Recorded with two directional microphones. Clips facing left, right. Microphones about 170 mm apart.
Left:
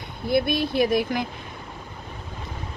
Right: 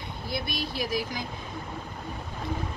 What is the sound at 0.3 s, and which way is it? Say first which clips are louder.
Speech: left 11 dB; 55° left (ahead or behind).